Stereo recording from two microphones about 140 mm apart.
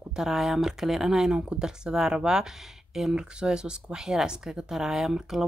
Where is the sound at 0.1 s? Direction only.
5° right (ahead or behind).